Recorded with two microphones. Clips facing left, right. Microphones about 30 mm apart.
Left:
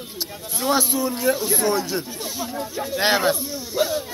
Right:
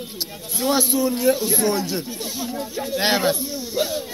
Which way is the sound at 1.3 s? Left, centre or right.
Centre.